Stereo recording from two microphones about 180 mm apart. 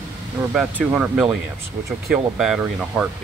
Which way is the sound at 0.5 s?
5° right (ahead or behind).